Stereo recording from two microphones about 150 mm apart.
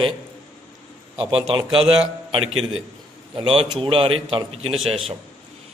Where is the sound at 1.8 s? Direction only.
40° right (ahead or behind).